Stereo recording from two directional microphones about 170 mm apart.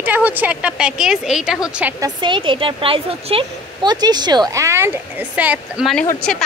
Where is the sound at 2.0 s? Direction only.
30° right (ahead or behind); by 6.4 s 5° left (ahead or behind).